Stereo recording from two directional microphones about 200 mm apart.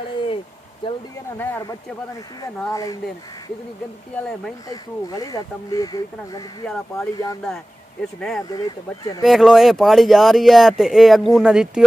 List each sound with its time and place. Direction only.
0.8 s speech: 25° left (ahead or behind)
1.4 s speech: 10° left (ahead or behind)
4.6 s speech: 20° left (ahead or behind)
8.5 s speech: 20° left (ahead or behind)
9.2 s speech: centre (ahead or behind)